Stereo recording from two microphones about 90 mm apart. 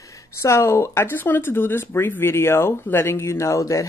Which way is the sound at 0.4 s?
30° left (ahead or behind).